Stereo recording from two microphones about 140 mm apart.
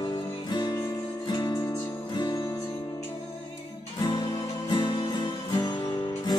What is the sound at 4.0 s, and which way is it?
Music, 30° left (ahead or behind).